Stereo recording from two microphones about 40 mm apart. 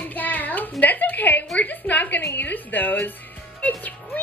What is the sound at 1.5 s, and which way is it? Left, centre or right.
A woman's voice, left.